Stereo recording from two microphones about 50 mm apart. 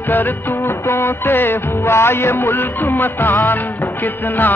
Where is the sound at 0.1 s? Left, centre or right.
Left.